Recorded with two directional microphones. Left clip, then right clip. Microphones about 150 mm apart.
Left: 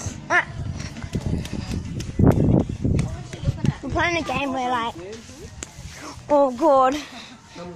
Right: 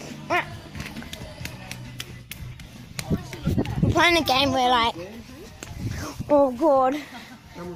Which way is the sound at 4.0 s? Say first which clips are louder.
Right 4 dB; 40° right (ahead or behind).